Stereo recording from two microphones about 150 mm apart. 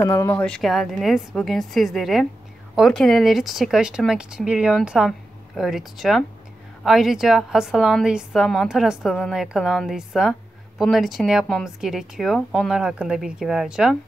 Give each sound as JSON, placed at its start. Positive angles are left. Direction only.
{"t": 0.0, "sound": "speech", "side_deg": 20}
{"t": 0.5, "sound": "speech", "side_deg": 0}